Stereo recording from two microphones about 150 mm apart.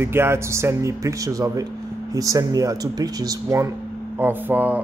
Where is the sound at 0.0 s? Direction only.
15° right (ahead or behind).